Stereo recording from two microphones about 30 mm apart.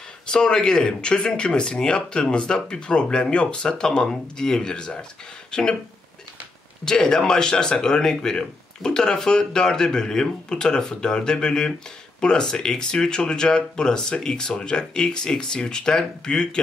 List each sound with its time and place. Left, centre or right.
0.3 s speech: left
4.6 s speech: left
6.8 s speech: left